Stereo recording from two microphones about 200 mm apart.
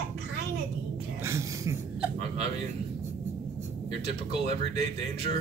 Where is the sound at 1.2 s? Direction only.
15° right (ahead or behind).